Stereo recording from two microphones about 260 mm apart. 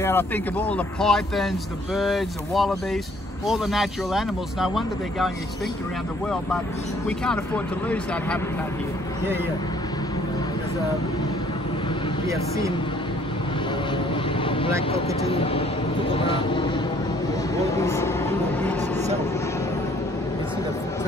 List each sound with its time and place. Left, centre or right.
0.0 s speech: centre
7.1 s speech: centre
13.9 s vehicle: centre
14.9 s speech: left
17.7 s a sound: centre